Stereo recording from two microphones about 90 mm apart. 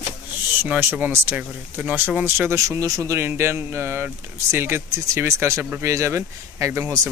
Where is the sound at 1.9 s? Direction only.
20° right (ahead or behind).